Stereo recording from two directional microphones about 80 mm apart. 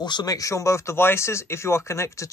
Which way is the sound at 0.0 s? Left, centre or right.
Left.